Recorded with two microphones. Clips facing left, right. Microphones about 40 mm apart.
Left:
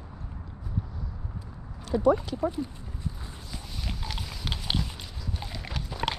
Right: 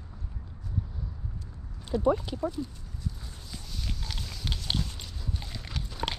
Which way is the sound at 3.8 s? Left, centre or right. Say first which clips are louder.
Left 3 dB; centre.